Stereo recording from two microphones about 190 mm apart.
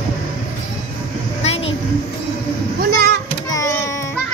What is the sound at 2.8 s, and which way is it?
Children playing, 55° right (ahead or behind).